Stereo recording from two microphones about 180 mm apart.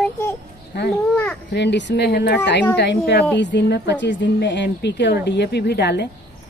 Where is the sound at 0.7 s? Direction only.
70° left (ahead or behind).